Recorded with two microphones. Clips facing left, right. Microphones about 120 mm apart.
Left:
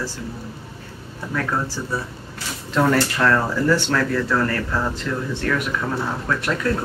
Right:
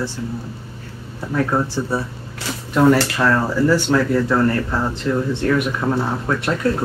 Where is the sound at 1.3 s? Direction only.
25° right (ahead or behind).